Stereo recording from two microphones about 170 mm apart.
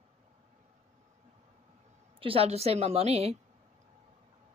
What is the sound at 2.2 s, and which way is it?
Speech, 35° right (ahead or behind).